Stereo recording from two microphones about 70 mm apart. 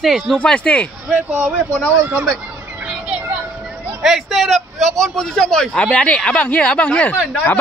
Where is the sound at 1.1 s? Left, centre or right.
Centre.